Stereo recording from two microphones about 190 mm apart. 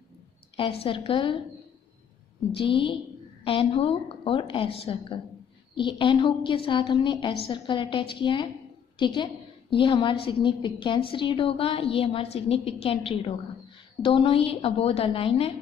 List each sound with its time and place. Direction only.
0.6 s a woman's voice: 30° left (ahead or behind)
2.5 s a woman's voice: 30° left (ahead or behind)